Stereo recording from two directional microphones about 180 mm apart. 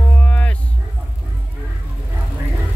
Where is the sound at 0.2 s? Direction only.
10° left (ahead or behind).